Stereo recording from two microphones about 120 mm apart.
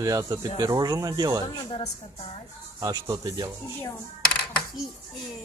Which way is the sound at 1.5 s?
35° left (ahead or behind).